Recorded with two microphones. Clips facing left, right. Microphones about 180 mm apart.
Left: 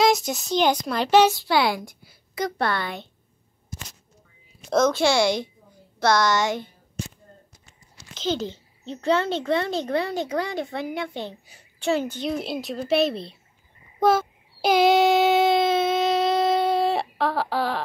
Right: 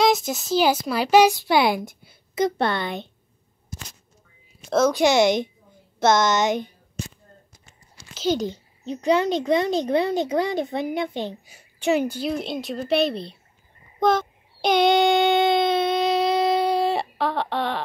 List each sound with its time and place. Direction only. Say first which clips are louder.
0.0 s a child's voice: even; centre (ahead or behind); by 3.1 s 20° right (ahead or behind)
4.6 s a woman's voice: right 1 dB; 5° right (ahead or behind)
8.1 s a child's voice: right 3 dB; 10° right (ahead or behind)
13.9 s child singing: even; 5° left (ahead or behind)